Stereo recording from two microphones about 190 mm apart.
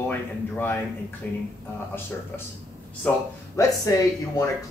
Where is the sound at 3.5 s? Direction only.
15° left (ahead or behind).